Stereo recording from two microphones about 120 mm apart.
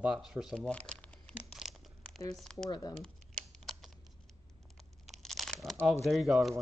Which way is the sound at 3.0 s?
5° left (ahead or behind).